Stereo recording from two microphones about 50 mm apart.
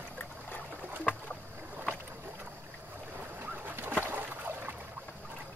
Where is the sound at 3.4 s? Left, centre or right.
Right.